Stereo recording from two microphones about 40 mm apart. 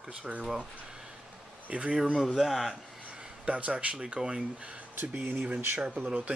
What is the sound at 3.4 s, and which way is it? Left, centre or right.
Speech, right.